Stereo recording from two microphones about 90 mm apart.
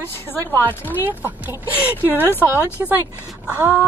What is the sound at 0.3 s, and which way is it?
Speech, 20° left (ahead or behind).